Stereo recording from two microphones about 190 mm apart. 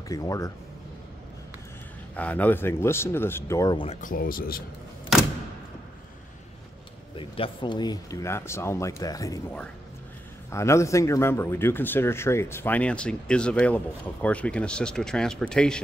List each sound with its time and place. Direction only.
0.1 s speech: 20° left (ahead or behind)
2.1 s speech: 10° left (ahead or behind)
3.8 s speech: 40° left (ahead or behind)
7.2 s speech: 30° left (ahead or behind)
10.5 s speech: 15° left (ahead or behind)